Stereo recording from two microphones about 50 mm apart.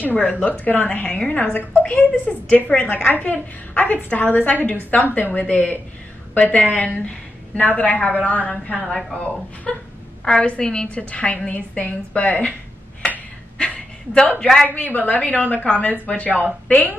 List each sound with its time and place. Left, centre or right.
0.0 s a woman's voice: left; by 10.9 s centre
11.0 s a woman's voice: left
13.6 s a sound: centre
14.7 s a woman's voice: left